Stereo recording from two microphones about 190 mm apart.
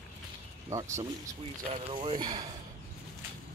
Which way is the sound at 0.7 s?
15° right (ahead or behind).